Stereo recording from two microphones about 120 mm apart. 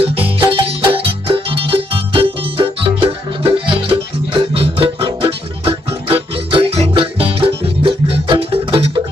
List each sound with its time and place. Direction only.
0.0 s music: 50° right (ahead or behind)